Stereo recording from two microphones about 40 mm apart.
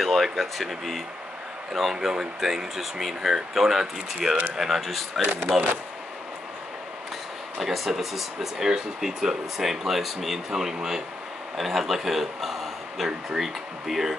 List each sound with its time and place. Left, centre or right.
0.0 s speech: centre
1.7 s speech: centre
5.2 s speech: right
7.5 s speech: centre
8.6 s a man's voice: centre